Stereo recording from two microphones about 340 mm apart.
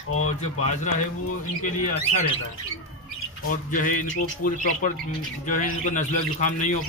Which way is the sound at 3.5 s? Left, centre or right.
Left.